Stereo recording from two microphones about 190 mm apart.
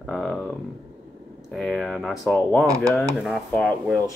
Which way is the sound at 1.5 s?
Centre (ahead or behind).